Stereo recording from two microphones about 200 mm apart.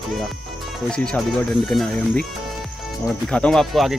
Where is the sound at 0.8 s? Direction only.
5° left (ahead or behind).